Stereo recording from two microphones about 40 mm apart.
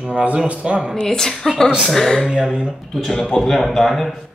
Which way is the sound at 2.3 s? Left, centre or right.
Right.